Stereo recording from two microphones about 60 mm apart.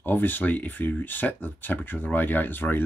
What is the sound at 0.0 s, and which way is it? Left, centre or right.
Speech, left.